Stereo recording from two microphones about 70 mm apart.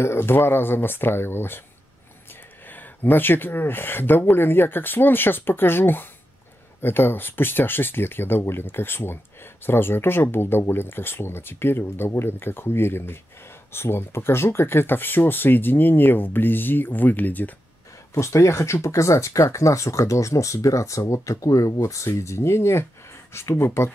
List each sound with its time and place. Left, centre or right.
0.0 s speech: left
2.7 s speech: left
18.1 s speech: left